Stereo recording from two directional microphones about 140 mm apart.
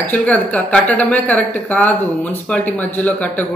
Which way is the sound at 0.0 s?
10° left (ahead or behind).